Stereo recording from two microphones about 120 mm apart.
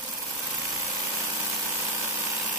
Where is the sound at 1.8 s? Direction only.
20° right (ahead or behind).